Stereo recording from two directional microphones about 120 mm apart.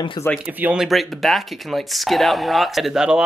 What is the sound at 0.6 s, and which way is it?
Speech, 10° right (ahead or behind).